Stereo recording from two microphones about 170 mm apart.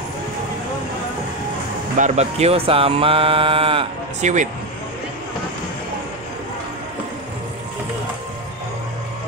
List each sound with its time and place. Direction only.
2.0 s speech: 40° right (ahead or behind)
4.2 s speech: 45° right (ahead or behind)